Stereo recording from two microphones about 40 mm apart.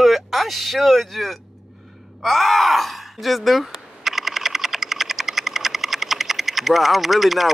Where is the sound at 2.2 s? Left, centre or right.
Centre.